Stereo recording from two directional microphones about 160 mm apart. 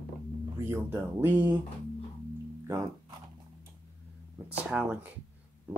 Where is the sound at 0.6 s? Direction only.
15° right (ahead or behind).